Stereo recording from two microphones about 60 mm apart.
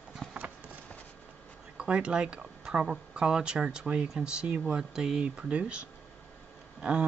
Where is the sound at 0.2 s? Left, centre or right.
Centre.